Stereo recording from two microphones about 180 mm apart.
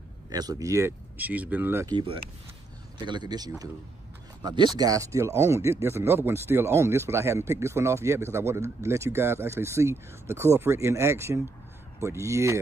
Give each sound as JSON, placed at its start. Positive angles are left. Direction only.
{"t": 0.3, "sound": "speech", "side_deg": -20}
{"t": 1.9, "sound": "speech", "side_deg": -25}